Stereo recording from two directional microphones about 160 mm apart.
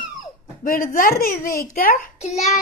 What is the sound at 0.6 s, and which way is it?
Speech, 60° left (ahead or behind).